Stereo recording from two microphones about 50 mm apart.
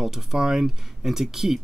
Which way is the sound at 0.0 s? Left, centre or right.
Centre.